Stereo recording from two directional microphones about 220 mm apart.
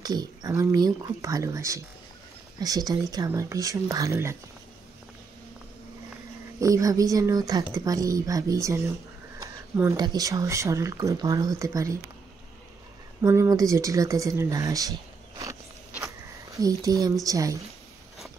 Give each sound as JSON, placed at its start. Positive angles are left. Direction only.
{"t": 0.0, "sound": "speech", "side_deg": -15}
{"t": 6.6, "sound": "speech", "side_deg": -15}
{"t": 13.2, "sound": "speech", "side_deg": -15}
{"t": 16.5, "sound": "speech", "side_deg": -15}